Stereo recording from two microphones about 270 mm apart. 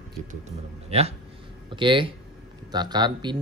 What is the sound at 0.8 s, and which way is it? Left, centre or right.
Speech, right.